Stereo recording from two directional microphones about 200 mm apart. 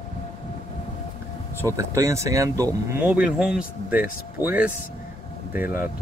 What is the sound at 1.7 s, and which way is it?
Speech, 15° right (ahead or behind).